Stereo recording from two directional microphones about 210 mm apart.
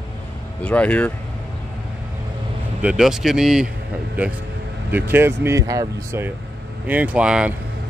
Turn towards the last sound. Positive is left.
turn(degrees=-5)  # may be behind; listen again after turning